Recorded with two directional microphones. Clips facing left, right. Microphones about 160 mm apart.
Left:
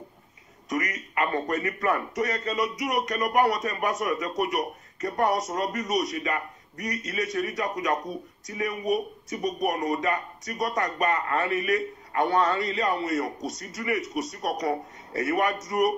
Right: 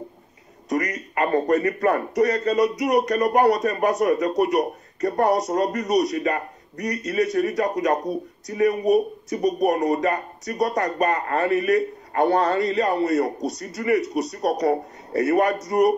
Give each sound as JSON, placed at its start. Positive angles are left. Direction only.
{"t": 0.7, "sound": "a man's voice", "side_deg": -35}